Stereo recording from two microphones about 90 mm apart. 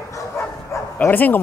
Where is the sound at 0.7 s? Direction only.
20° left (ahead or behind).